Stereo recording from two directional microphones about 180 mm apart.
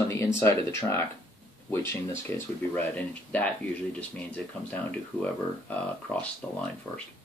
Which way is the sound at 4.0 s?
10° left (ahead or behind).